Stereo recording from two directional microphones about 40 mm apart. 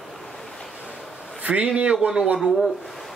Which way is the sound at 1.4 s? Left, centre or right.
Right.